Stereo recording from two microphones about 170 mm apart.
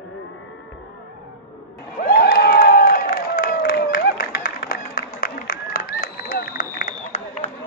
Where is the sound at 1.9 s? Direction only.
55° left (ahead or behind).